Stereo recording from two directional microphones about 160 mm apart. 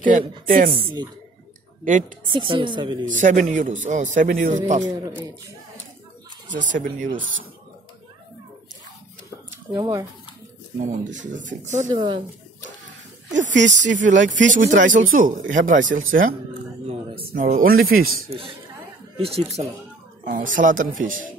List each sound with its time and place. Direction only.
0.7 s speech: 35° right (ahead or behind)
1.9 s a man's voice: 55° right (ahead or behind)
2.2 s speech: 30° right (ahead or behind)
3.1 s a man's voice: 55° right (ahead or behind)
6.5 s a man's voice: 50° right (ahead or behind)
9.7 s speech: 25° right (ahead or behind)
10.8 s a man's voice: 50° right (ahead or behind)
11.9 s speech: 30° right (ahead or behind)
13.4 s a man's voice: 50° right (ahead or behind)
16.8 s speech: 40° right (ahead or behind)
17.3 s speech: 60° right (ahead or behind)
19.1 s speech: 40° right (ahead or behind)
20.2 s speech: 60° right (ahead or behind)